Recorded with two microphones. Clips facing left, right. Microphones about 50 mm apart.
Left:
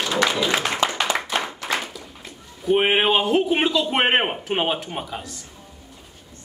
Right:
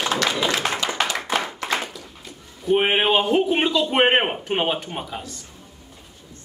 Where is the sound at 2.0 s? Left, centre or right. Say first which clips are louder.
Left 1 dB; centre.